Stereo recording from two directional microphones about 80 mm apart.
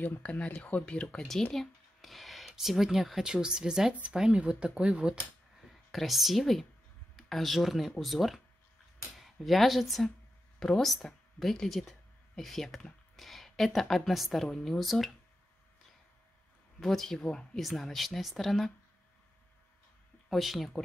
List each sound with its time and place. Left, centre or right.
0.0 s speech: centre
16.8 s speech: centre
20.2 s speech: centre